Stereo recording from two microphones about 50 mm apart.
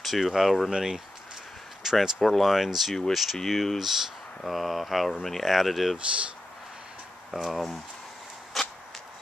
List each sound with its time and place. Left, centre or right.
0.0 s speech: centre
0.7 s speech: centre
1.8 s a sound: centre
2.1 s speech: centre
7.2 s speech: centre
8.5 s a sound: centre